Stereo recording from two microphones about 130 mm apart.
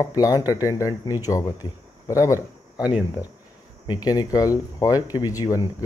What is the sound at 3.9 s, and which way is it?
Speech, 30° left (ahead or behind).